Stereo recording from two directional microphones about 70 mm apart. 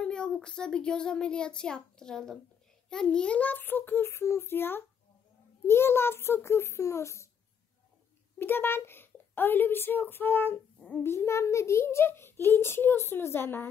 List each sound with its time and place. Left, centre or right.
0.0 s a child's voice: centre; by 7.2 s left
8.4 s a child's voice: left
11.1 s a child's voice: left